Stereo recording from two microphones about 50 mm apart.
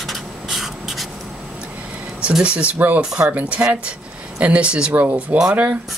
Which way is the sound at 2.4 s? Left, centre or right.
Right.